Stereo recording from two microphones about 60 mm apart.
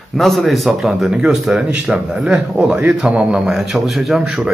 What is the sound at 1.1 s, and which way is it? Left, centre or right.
A man's voice, centre.